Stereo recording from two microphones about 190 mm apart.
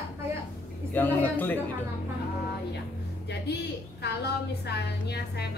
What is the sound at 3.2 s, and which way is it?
A woman's voice, 60° left (ahead or behind).